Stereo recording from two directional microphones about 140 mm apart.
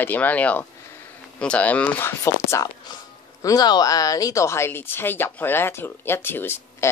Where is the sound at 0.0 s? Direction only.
10° left (ahead or behind).